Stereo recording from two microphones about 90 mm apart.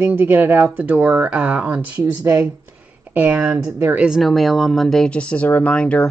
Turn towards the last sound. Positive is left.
turn(degrees=10)  # may be behind; listen again after turning